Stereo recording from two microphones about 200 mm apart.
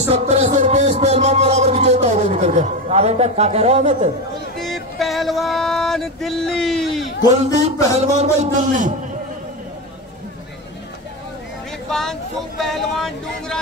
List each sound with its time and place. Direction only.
0.1 s music: 35° right (ahead or behind)
4.6 s a sound: centre (ahead or behind)
7.2 s a man's voice: 35° right (ahead or behind)
11.9 s speech: centre (ahead or behind)